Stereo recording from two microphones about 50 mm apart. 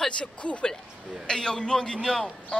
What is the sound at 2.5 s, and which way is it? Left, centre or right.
Speech, centre.